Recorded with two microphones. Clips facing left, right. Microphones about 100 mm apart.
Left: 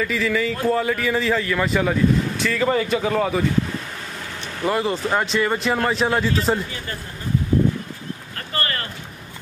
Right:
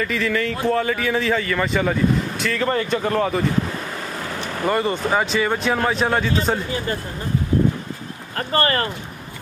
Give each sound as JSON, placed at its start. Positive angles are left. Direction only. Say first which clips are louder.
{"t": 0.0, "sound": "a man's voice", "louder": "even", "side_deg": 0}
{"t": 4.6, "sound": "a man's voice", "louder": "right 1 dB", "side_deg": 0}
{"t": 8.4, "sound": "speech", "louder": "right 8 dB", "side_deg": -35}